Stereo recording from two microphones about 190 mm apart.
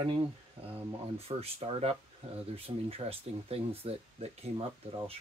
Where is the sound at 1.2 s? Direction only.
30° right (ahead or behind).